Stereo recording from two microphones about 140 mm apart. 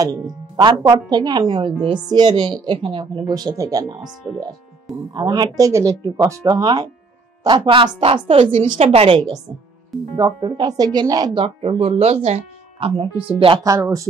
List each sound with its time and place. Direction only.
0.6 s a woman's voice: 30° right (ahead or behind)
5.1 s a woman's voice: 30° right (ahead or behind)
10.1 s a woman's voice: 25° right (ahead or behind)
11.3 s a woman's voice: 45° right (ahead or behind)
12.8 s speech: 40° right (ahead or behind)
13.7 s a woman's voice: 25° right (ahead or behind)